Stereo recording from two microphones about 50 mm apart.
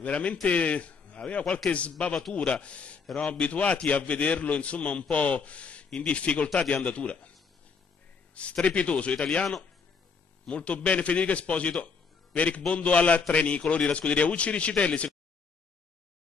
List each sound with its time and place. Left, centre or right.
0.0 s a man's voice: left
8.4 s a man's voice: left